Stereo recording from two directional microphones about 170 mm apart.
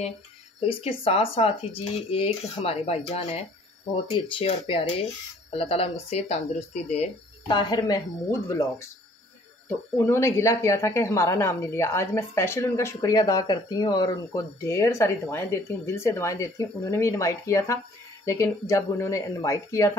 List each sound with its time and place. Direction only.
0.6 s speech: 35° left (ahead or behind)
7.4 s speech: 25° left (ahead or behind)